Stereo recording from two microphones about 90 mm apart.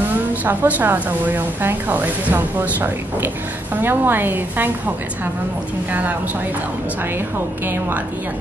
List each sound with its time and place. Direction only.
0.5 s a woman's voice: 20° right (ahead or behind)
7.3 s a woman's voice: 25° right (ahead or behind)